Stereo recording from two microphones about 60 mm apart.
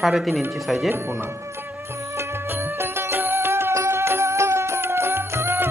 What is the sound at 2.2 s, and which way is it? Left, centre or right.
Music, right.